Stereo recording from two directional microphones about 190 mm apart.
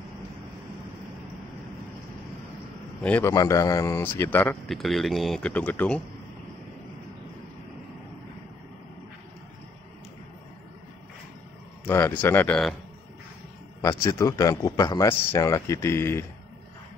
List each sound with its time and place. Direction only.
3.0 s a man's voice: 10° left (ahead or behind)
11.8 s a man's voice: 10° left (ahead or behind)
13.7 s a man's voice: 15° left (ahead or behind)